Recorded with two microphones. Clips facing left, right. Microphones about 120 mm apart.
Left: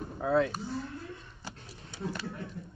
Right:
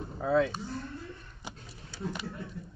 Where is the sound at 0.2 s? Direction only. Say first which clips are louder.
Right 1 dB; centre (ahead or behind).